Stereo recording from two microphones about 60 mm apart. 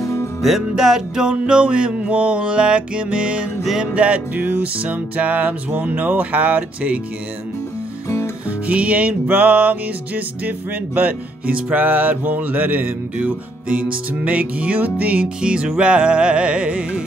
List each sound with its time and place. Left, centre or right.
0.0 s music: left
0.4 s music: centre
3.6 s music: centre
3.9 s music: centre
8.5 s music: right